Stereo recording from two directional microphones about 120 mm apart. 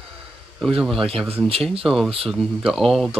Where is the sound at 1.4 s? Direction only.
50° right (ahead or behind).